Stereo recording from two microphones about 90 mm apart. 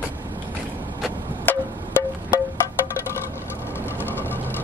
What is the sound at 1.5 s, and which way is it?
Percussion, 20° left (ahead or behind).